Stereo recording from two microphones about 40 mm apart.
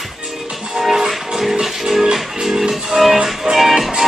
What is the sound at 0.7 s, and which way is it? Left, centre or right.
Music, centre.